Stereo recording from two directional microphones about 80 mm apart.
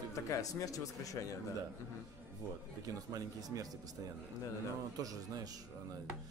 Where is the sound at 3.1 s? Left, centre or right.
Right.